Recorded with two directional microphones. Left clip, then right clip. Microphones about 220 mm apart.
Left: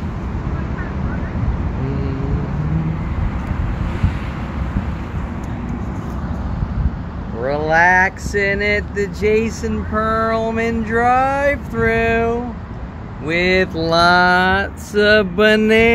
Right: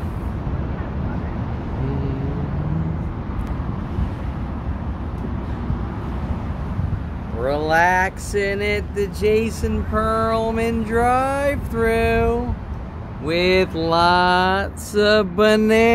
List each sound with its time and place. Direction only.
7.4 s speech: centre (ahead or behind)
13.3 s speech: 20° right (ahead or behind)
13.7 s speech: 5° right (ahead or behind)